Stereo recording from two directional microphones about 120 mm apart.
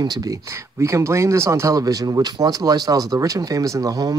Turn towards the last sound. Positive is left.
turn(degrees=-30)  # may be behind; listen again after turning